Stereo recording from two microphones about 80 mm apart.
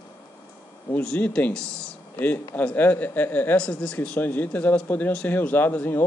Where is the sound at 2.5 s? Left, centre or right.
Left.